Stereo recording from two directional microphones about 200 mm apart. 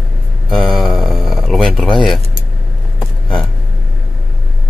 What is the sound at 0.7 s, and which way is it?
Mantra, centre (ahead or behind).